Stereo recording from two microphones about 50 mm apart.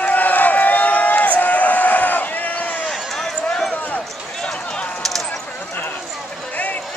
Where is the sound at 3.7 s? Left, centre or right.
Left.